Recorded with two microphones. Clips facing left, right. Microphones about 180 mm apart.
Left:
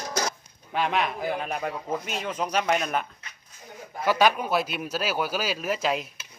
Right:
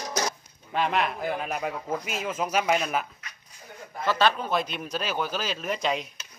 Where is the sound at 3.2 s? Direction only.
30° left (ahead or behind).